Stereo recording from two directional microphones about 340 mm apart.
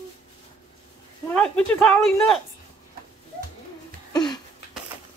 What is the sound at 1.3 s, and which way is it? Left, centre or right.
Speech, centre.